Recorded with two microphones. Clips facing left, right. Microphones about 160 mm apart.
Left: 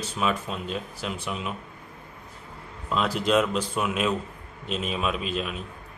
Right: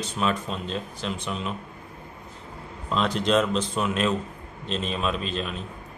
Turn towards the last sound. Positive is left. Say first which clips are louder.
# even
turn(degrees=10)  # may be behind; listen again after turning